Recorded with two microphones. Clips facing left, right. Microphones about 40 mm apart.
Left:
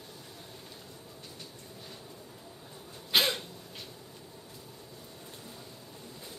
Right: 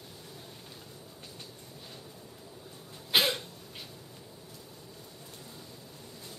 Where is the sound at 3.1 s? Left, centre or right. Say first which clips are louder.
Right 1 dB; centre.